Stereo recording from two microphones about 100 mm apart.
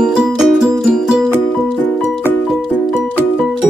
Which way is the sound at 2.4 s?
Centre (ahead or behind).